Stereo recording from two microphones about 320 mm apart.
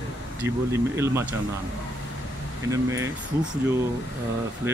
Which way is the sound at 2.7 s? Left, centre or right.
Centre.